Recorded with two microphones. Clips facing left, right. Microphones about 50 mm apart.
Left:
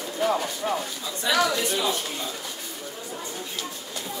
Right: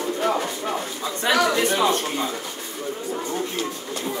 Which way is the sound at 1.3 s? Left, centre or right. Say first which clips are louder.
Right 3 dB; right.